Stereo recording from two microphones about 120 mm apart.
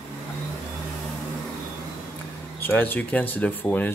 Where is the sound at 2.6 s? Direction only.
15° left (ahead or behind).